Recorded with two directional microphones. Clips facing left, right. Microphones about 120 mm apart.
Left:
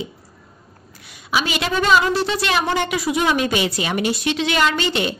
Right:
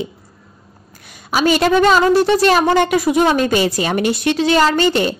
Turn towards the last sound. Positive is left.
turn(degrees=-40)  # may be behind; listen again after turning